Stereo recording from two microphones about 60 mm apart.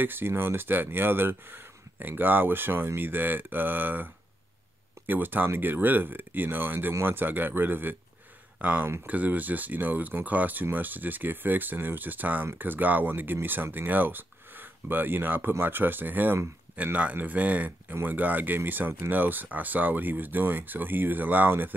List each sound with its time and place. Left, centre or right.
0.0 s speech: right